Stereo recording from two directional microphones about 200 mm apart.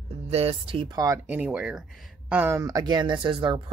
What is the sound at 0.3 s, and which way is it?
Speech, 30° right (ahead or behind).